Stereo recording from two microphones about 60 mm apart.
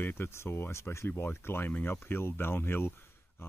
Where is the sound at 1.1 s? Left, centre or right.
Left.